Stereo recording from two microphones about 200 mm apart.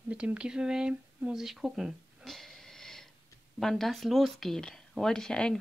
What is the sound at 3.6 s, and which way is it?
Speech, centre (ahead or behind).